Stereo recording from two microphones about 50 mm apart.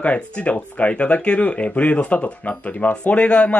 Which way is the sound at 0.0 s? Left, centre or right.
Left.